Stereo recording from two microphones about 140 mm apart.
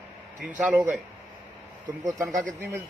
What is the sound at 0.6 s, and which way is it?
Speech, 10° right (ahead or behind).